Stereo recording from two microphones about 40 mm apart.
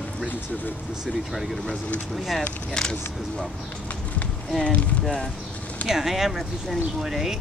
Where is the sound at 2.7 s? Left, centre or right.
Centre.